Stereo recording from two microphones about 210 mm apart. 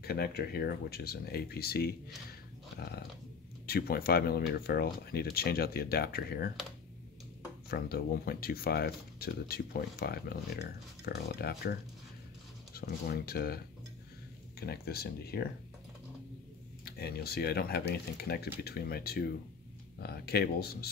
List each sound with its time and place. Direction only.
0.0 s speech: 50° left (ahead or behind)
2.8 s a sound: 50° left (ahead or behind)
3.6 s speech: 45° left (ahead or behind)
7.7 s speech: 45° left (ahead or behind)
14.6 s speech: 45° left (ahead or behind)
16.8 s speech: 50° left (ahead or behind)